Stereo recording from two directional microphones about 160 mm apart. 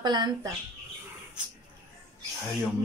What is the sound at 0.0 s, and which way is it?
Speech, 25° right (ahead or behind).